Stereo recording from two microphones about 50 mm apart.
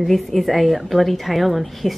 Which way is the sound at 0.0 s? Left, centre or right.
Centre.